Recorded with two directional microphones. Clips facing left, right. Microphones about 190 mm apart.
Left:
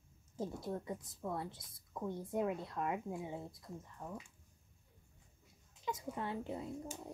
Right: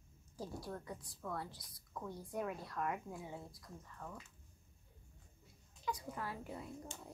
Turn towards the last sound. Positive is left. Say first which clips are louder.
# left 5 dB
turn(degrees=15)  # may be behind; listen again after turning